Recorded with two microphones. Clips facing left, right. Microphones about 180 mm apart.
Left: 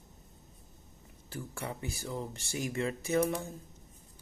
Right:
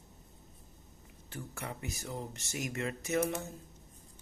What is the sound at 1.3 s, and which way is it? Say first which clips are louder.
Speech: left 3 dB; 35° left (ahead or behind).